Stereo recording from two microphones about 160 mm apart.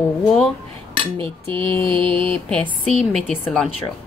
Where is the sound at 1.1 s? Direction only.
35° right (ahead or behind).